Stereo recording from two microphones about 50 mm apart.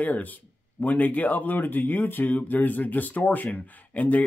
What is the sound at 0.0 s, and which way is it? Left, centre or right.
Speech, left.